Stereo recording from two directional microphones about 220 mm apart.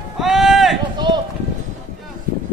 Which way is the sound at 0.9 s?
20° right (ahead or behind).